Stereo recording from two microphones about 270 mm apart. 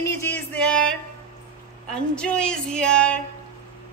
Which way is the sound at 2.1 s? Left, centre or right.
Centre.